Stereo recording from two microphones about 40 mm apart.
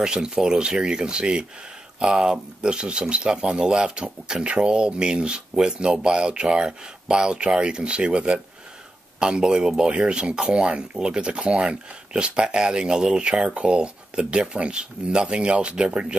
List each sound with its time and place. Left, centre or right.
0.0 s speech: centre
9.2 s speech: centre